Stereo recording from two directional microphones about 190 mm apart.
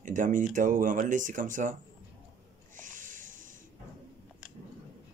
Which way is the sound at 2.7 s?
40° right (ahead or behind).